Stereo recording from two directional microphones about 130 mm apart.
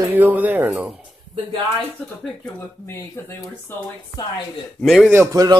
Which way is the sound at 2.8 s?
20° left (ahead or behind).